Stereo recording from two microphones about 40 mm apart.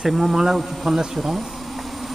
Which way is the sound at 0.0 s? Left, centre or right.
Centre.